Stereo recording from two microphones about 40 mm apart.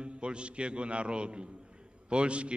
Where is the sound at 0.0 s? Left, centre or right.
Right.